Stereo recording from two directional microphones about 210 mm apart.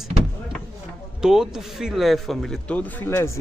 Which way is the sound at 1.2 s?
Centre (ahead or behind).